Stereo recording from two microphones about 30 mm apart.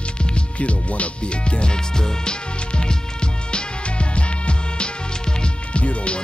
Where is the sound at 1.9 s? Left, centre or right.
Left.